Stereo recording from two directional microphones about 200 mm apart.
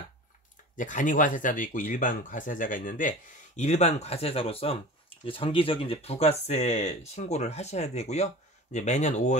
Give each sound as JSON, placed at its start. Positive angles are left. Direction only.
{"t": 0.7, "sound": "speech", "side_deg": 40}